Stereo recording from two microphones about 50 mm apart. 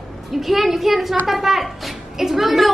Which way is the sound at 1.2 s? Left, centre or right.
Centre.